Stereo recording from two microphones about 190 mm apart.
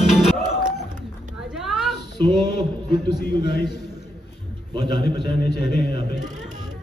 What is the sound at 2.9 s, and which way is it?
Speech, 55° left (ahead or behind).